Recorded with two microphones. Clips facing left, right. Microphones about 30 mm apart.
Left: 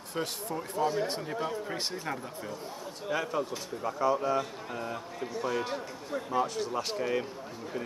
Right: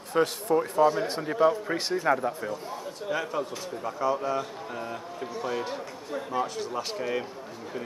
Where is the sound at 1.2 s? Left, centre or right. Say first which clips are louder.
Right 10 dB; right.